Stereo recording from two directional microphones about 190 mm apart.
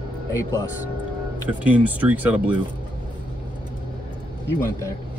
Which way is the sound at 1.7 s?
10° right (ahead or behind).